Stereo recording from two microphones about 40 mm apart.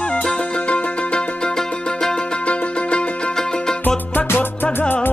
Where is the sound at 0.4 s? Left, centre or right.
Left.